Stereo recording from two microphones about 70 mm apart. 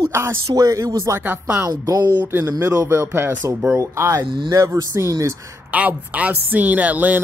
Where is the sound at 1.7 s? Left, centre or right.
Right.